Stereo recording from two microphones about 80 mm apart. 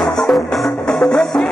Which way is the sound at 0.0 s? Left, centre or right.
Centre.